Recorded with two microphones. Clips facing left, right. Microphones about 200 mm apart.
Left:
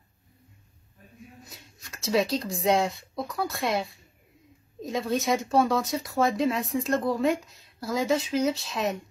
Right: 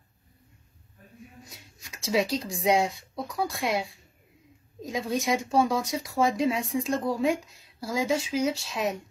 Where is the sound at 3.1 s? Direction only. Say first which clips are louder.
Even; 10° right (ahead or behind).